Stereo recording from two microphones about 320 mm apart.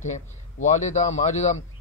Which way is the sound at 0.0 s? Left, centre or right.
Left.